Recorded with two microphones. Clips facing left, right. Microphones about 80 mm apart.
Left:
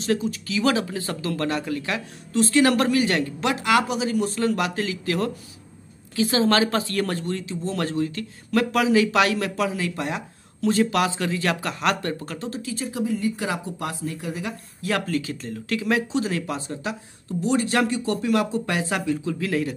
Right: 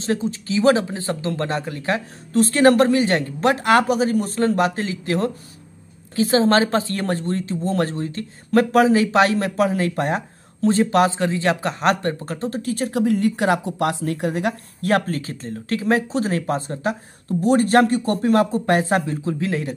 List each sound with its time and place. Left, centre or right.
0.0 s speech: right
15.0 s speech: right